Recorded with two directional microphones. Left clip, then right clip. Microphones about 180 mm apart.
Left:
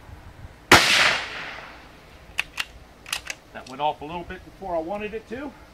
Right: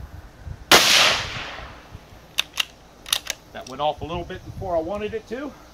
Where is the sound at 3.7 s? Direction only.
25° right (ahead or behind).